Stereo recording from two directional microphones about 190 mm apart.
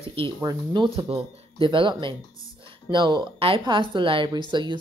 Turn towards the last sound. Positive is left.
turn(degrees=-25)  # may be behind; listen again after turning